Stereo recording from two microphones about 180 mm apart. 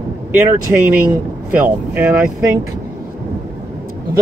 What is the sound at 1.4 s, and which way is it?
Speech, 10° right (ahead or behind).